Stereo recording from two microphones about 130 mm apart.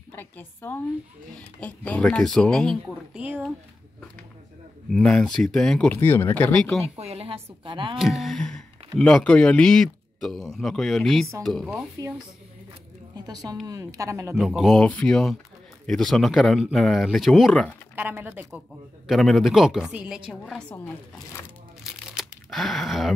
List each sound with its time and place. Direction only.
0.1 s a sound: 15° left (ahead or behind)
1.6 s speech: 10° left (ahead or behind)
3.2 s speech: 15° right (ahead or behind)
4.9 s a woman's voice: 5° left (ahead or behind)
5.9 s speech: 15° left (ahead or behind)
6.8 s a woman's voice: 50° right (ahead or behind)
8.0 s speech: centre (ahead or behind)
12.0 s speech: 25° right (ahead or behind)
13.3 s speech: 30° right (ahead or behind)
14.3 s a woman's voice: centre (ahead or behind)
17.9 s speech: 15° right (ahead or behind)
19.0 s a woman's voice: centre (ahead or behind)
21.8 s a sound: centre (ahead or behind)